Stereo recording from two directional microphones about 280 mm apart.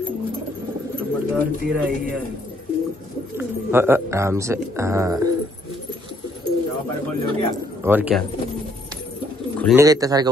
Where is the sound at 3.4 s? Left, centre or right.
Centre.